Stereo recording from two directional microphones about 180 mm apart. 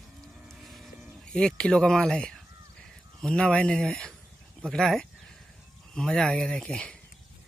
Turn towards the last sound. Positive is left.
turn(degrees=5)  # may be behind; listen again after turning